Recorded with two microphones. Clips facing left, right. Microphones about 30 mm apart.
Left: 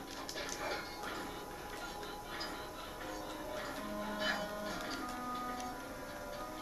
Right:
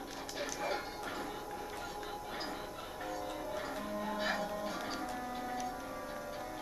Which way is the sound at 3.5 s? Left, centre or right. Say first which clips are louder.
Right 1 dB; centre.